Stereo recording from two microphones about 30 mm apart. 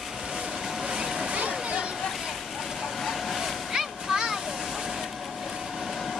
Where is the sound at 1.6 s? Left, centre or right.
Right.